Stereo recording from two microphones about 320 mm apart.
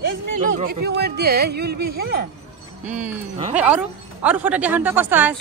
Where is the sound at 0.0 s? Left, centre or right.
Right.